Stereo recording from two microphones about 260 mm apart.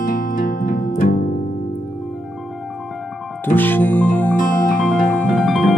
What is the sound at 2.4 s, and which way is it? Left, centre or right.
Music, centre.